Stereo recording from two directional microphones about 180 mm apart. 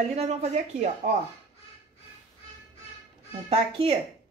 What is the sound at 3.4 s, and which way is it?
Speech, 30° right (ahead or behind).